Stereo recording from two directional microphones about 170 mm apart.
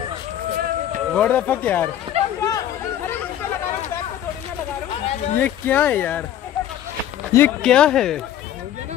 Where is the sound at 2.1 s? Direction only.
30° right (ahead or behind).